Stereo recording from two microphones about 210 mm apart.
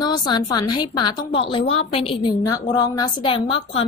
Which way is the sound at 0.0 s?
20° left (ahead or behind).